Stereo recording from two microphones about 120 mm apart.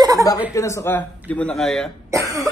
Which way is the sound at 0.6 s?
25° left (ahead or behind).